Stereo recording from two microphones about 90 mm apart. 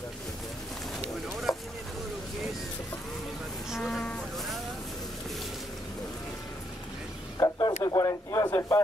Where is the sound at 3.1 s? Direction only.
Centre (ahead or behind).